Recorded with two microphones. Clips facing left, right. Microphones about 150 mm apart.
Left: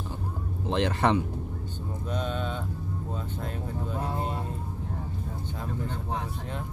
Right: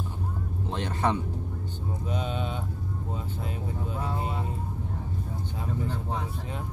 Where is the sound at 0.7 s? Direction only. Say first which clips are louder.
Left 4 dB; 90° left.